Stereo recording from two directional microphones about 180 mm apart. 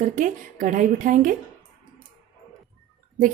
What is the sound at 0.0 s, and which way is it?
A woman's voice, 45° right (ahead or behind).